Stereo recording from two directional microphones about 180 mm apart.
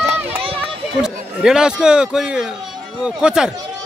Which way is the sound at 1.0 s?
5° right (ahead or behind).